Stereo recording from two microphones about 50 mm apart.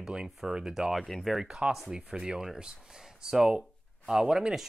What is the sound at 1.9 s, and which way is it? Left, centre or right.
Speech, centre.